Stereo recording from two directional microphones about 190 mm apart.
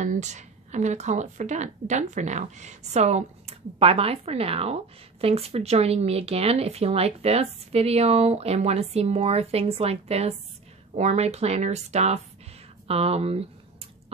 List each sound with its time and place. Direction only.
0.0 s speech: 40° right (ahead or behind)